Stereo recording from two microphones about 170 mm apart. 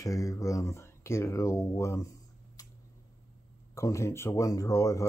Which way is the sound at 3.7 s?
15° left (ahead or behind).